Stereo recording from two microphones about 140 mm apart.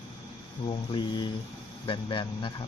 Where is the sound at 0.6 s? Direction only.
35° left (ahead or behind).